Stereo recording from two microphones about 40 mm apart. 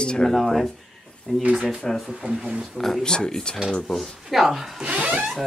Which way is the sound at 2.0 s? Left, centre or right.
Centre.